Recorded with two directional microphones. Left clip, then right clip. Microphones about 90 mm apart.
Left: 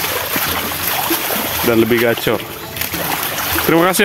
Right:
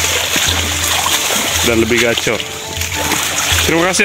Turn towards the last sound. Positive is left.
turn(degrees=25)  # may be behind; listen again after turning